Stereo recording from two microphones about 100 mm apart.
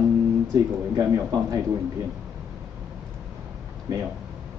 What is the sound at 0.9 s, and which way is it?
Speech, 35° right (ahead or behind).